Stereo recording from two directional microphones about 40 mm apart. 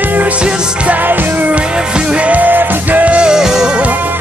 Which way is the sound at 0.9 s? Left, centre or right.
Right.